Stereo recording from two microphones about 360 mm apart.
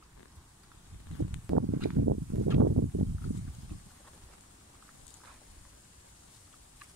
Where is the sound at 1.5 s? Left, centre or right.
Right.